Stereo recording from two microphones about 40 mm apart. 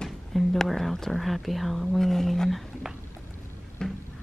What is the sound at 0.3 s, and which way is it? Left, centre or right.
Speech, centre.